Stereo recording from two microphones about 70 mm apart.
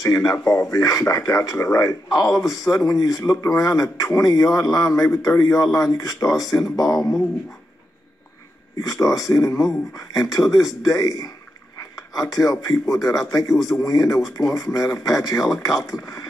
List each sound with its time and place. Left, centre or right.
0.0 s speech: left
7.0 s speech: centre
8.7 s speech: left